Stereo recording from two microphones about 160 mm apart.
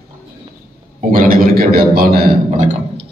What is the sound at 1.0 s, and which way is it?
A man's voice, 60° right (ahead or behind).